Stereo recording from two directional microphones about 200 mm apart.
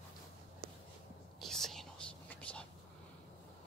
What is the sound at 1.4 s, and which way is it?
Whispering, centre (ahead or behind).